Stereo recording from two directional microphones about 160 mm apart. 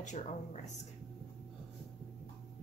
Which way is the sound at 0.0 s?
50° left (ahead or behind).